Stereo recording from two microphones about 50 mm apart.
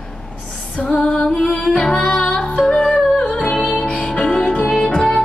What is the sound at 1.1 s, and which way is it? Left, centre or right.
Music, centre.